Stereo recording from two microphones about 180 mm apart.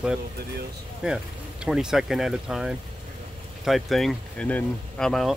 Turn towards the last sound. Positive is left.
turn(degrees=0)  # may be behind; listen again after turning